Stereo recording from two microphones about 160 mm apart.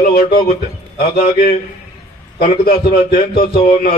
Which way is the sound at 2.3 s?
65° left (ahead or behind).